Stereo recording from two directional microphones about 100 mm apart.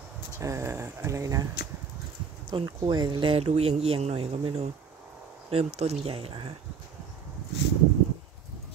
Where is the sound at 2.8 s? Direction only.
45° right (ahead or behind).